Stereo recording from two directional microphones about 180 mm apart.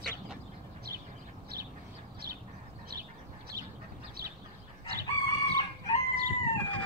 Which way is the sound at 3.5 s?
20° right (ahead or behind).